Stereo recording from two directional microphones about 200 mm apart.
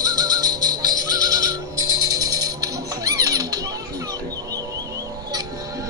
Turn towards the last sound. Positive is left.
turn(degrees=-20)  # may be behind; listen again after turning